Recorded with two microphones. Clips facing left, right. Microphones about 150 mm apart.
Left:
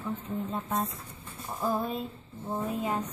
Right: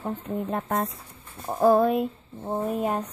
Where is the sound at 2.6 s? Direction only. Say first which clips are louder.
Right 5 dB; 55° right (ahead or behind).